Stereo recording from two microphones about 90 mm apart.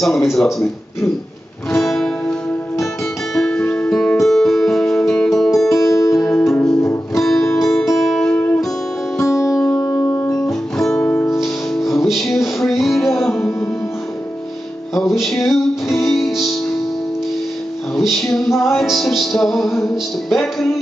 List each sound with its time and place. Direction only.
0.0 s music: centre (ahead or behind)
3.3 s music: 10° left (ahead or behind)
5.9 s music: 35° left (ahead or behind)
6.4 s music: 5° left (ahead or behind)
9.7 s music: 10° left (ahead or behind)
15.0 s music: centre (ahead or behind)
17.9 s music: centre (ahead or behind)